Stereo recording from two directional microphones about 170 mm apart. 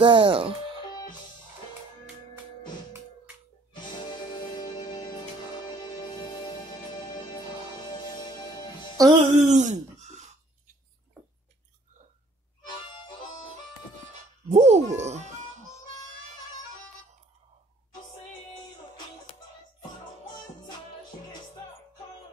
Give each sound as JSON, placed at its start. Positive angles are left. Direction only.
{"t": 0.0, "sound": "speech", "side_deg": -30}
{"t": 3.7, "sound": "music", "side_deg": 25}
{"t": 8.1, "sound": "music", "side_deg": 25}
{"t": 8.9, "sound": "speech", "side_deg": -20}
{"t": 9.4, "sound": "a sound", "side_deg": -45}
{"t": 14.5, "sound": "speech", "side_deg": -40}